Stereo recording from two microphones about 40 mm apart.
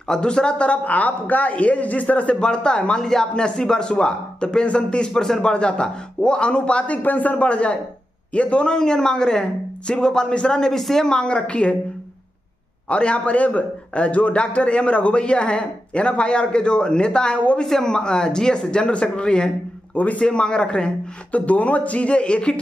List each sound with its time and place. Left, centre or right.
0.1 s a man's voice: left
2.4 s a man's voice: left
5.5 s a man's voice: left
7.0 s a man's voice: left
8.7 s a man's voice: centre
10.8 s speech: centre
11.1 s a man's voice: left
12.9 s a man's voice: left
21.3 s a man's voice: left